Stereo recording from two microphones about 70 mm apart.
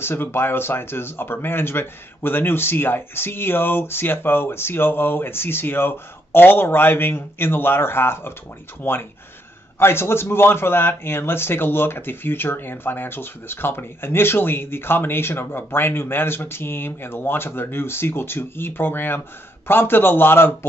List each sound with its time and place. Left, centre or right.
0.0 s a man's voice: left
9.8 s a man's voice: left